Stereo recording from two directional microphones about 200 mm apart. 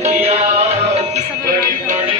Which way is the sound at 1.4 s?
45° right (ahead or behind).